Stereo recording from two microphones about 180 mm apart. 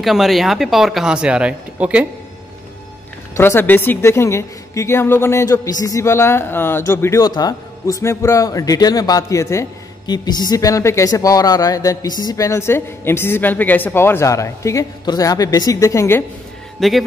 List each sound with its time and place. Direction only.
0.0 s speech: centre (ahead or behind)
3.3 s a woman's voice: 10° left (ahead or behind)
16.8 s speech: centre (ahead or behind)